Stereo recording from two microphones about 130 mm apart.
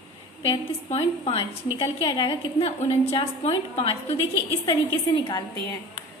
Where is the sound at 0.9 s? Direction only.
55° left (ahead or behind).